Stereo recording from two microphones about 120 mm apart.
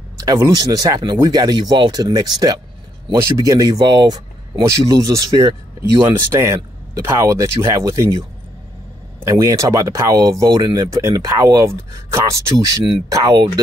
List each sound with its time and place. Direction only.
0.2 s speech: 30° right (ahead or behind)
9.2 s speech: 25° right (ahead or behind)
13.1 s speech: 35° right (ahead or behind)